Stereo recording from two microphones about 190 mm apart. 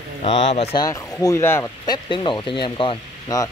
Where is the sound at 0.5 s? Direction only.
30° left (ahead or behind).